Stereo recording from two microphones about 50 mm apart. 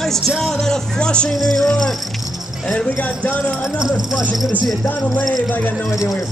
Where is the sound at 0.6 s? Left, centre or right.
Centre.